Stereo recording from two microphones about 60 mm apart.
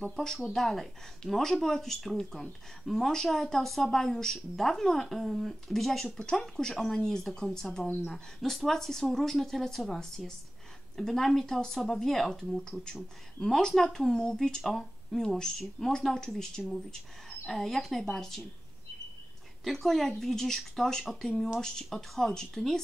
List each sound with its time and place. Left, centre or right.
0.1 s speech: centre
7.8 s speech: left
8.1 s speech: centre
19.6 s speech: centre